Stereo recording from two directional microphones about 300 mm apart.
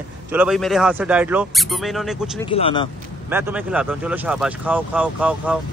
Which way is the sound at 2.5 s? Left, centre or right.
Centre.